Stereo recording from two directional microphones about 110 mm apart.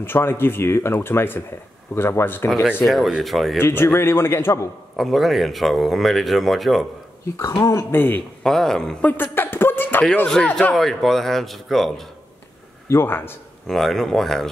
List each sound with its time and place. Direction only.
0.0 s speech: 20° left (ahead or behind)
2.8 s a man's voice: centre (ahead or behind)
3.5 s speech: 20° left (ahead or behind)
4.9 s a man's voice: centre (ahead or behind)
7.3 s speech: 35° left (ahead or behind)
7.9 s speech: 20° left (ahead or behind)
8.5 s a man's voice: 5° left (ahead or behind)
9.1 s a sound: 20° left (ahead or behind)
10.0 s a man's voice: 5° left (ahead or behind)
12.9 s speech: 20° left (ahead or behind)
13.7 s a man's voice: centre (ahead or behind)